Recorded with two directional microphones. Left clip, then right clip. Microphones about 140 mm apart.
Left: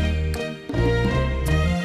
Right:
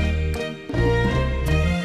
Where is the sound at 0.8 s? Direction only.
20° left (ahead or behind).